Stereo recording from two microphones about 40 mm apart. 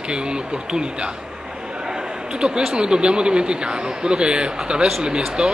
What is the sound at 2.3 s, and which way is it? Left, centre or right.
A man's voice, right.